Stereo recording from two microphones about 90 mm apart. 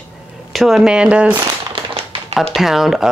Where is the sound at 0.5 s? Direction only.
Centre (ahead or behind).